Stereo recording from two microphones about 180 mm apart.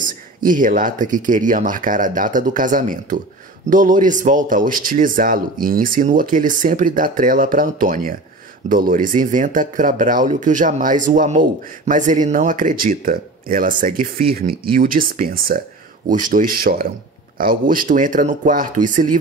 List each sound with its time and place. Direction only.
0.4 s speech: 50° right (ahead or behind)